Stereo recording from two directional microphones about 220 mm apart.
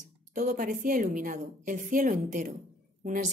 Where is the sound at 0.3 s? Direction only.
35° right (ahead or behind).